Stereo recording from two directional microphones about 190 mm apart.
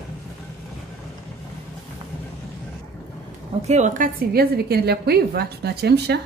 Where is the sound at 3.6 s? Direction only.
40° right (ahead or behind).